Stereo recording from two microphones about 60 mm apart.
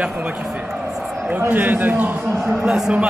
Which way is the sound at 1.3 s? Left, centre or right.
Right.